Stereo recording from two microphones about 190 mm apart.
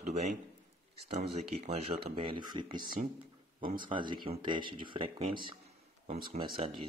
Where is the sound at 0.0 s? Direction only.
40° right (ahead or behind).